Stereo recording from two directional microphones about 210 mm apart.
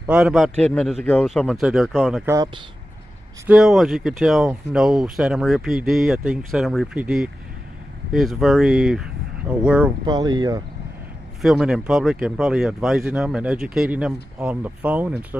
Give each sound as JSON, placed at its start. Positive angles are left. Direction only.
{"t": 0.0, "sound": "speech", "side_deg": -5}
{"t": 2.2, "sound": "speech", "side_deg": -20}
{"t": 3.4, "sound": "speech", "side_deg": 0}
{"t": 10.0, "sound": "speech", "side_deg": -20}
{"t": 11.4, "sound": "speech", "side_deg": 0}